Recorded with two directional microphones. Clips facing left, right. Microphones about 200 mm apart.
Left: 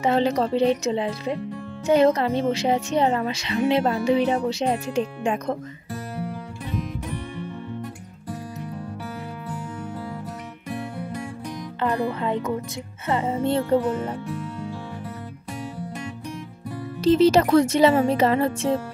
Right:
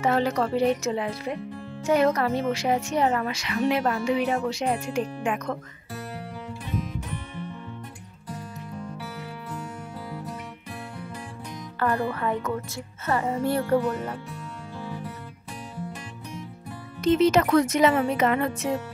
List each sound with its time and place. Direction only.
0.0 s speech: 20° left (ahead or behind)
11.8 s speech: 20° left (ahead or behind)
17.0 s speech: 35° left (ahead or behind)